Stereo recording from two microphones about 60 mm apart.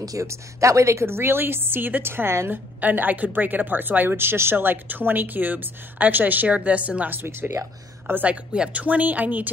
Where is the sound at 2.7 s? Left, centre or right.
Right.